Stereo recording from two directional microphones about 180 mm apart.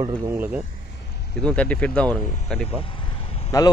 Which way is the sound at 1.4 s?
5° left (ahead or behind).